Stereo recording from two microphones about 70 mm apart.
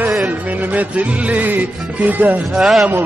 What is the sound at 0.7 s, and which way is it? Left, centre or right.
Music, right.